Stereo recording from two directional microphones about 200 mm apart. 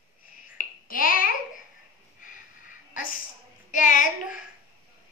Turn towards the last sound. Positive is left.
turn(degrees=40)  # may be behind; listen again after turning